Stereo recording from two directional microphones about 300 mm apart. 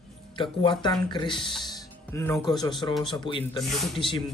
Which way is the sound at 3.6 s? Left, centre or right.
Centre.